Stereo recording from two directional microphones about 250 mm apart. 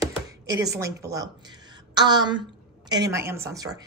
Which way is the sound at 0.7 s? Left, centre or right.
Centre.